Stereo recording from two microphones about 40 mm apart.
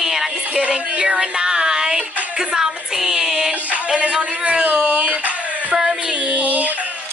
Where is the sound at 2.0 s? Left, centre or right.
Right.